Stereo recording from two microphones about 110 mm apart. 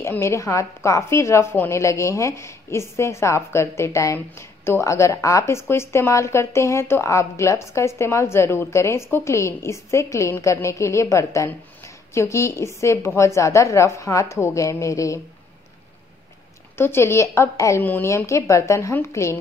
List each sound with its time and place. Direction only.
0.0 s speech: 25° left (ahead or behind)
16.7 s speech: 20° left (ahead or behind)